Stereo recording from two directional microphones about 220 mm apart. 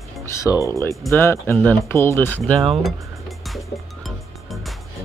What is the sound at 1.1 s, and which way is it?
Speech, 10° left (ahead or behind).